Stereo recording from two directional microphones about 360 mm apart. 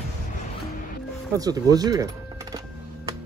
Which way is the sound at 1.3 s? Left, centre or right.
Centre.